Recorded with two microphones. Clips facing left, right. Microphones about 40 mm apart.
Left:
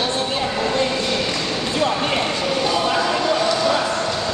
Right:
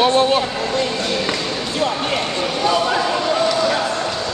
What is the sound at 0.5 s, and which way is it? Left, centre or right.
Speech, centre.